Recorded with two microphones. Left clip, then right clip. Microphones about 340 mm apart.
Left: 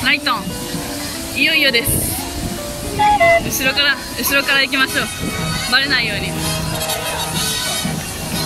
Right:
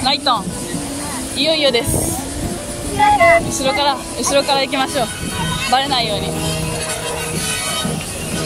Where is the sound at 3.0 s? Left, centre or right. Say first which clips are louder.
Right 1 dB; centre.